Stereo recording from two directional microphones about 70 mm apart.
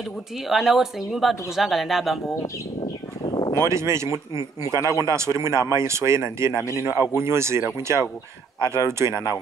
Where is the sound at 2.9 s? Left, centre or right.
Left.